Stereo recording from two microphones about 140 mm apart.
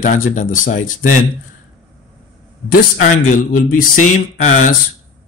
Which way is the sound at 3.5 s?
70° left (ahead or behind).